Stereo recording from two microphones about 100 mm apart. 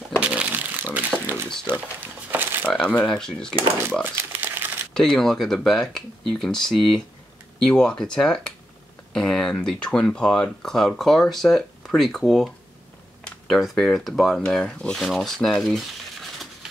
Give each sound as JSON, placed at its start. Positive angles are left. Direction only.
{"t": 0.2, "sound": "a sound", "side_deg": -15}
{"t": 2.7, "sound": "speech", "side_deg": 10}
{"t": 4.0, "sound": "crumpling", "side_deg": -20}
{"t": 4.9, "sound": "speech", "side_deg": 5}